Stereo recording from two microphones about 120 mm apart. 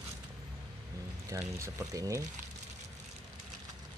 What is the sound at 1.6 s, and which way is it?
Speech, 30° right (ahead or behind).